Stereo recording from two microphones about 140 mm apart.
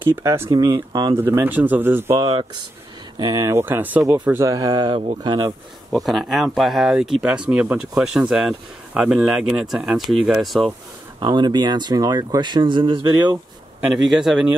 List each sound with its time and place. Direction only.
0.0 s speech: 20° right (ahead or behind)
2.1 s speech: 30° right (ahead or behind)
5.9 s speech: centre (ahead or behind)
11.1 s speech: 35° right (ahead or behind)
13.7 s speech: 5° right (ahead or behind)